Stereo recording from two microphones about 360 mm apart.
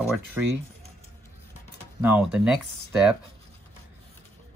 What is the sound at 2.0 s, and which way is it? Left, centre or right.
Speech, centre.